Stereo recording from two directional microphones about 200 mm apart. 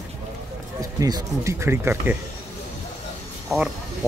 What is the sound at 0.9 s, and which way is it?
Speech, 20° right (ahead or behind).